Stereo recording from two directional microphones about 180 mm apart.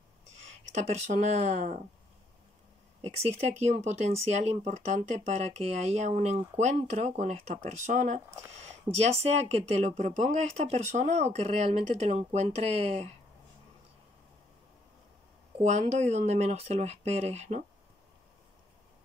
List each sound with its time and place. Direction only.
0.5 s speech: 40° right (ahead or behind)
3.3 s speech: 40° right (ahead or behind)
15.6 s speech: 40° right (ahead or behind)